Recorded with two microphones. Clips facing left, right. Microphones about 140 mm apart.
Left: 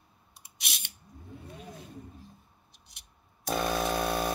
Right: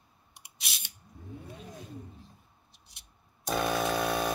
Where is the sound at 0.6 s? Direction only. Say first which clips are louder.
Left 2 dB; 35° right (ahead or behind).